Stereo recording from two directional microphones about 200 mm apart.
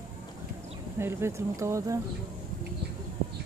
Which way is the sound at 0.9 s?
10° right (ahead or behind).